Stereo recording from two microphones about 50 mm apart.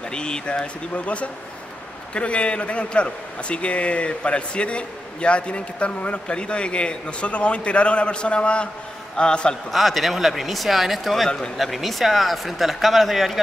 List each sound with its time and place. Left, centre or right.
0.1 s a man's voice: centre
9.7 s speech: centre
11.2 s speech: centre
11.5 s speech: centre